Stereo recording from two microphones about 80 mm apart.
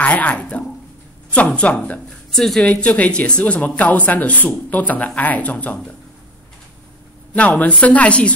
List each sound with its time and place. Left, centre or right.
0.0 s speech: centre
2.0 s a sound: centre
2.6 s speech: centre
7.3 s speech: centre